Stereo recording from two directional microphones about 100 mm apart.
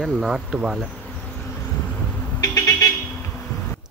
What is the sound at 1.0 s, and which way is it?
Insect, 10° left (ahead or behind).